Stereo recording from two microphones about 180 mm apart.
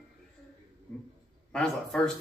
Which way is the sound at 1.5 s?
5° left (ahead or behind).